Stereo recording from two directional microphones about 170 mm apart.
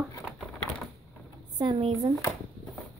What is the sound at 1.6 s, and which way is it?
Speech, 25° right (ahead or behind).